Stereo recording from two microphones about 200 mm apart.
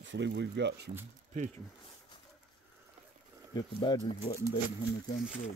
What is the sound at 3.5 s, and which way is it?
Speech, 20° left (ahead or behind).